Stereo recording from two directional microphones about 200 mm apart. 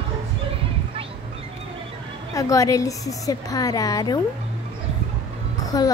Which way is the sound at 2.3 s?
15° left (ahead or behind).